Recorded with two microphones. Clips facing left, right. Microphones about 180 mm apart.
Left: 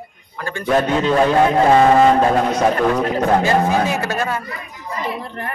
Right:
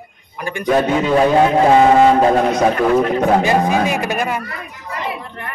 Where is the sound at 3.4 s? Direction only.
15° right (ahead or behind).